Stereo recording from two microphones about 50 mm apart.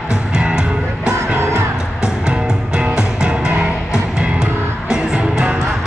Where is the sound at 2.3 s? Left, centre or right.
Centre.